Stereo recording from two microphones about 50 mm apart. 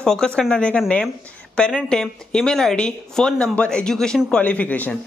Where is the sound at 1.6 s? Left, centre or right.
Left.